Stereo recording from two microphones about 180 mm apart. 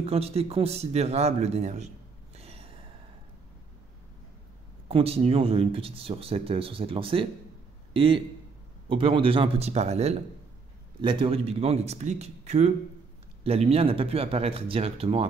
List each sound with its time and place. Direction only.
0.0 s speech: 35° right (ahead or behind)
2.3 s gasp: 35° right (ahead or behind)
4.8 s a man's voice: 35° right (ahead or behind)